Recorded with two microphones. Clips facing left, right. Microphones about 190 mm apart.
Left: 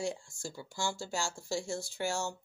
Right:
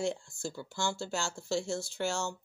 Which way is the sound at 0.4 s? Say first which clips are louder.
Right 2 dB; 10° left (ahead or behind).